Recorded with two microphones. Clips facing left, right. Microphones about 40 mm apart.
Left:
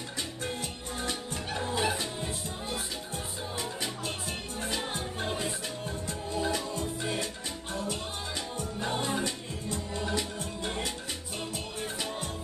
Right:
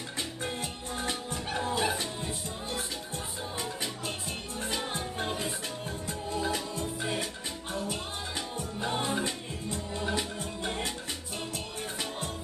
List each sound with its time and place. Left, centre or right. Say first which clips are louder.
1.8 s music: even; centre
4.6 s music: right 1 dB; centre
8.5 s music: even; centre